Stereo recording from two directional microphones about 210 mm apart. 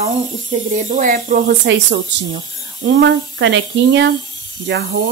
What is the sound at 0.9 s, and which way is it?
Speech, 40° right (ahead or behind).